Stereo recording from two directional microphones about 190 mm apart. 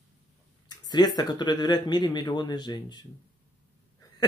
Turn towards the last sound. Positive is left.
turn(degrees=25)  # may be behind; listen again after turning